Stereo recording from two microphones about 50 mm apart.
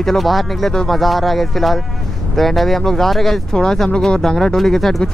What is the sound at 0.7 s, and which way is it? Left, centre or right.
Speech, centre.